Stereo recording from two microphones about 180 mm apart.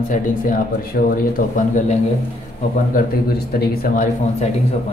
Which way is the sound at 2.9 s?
60° left (ahead or behind).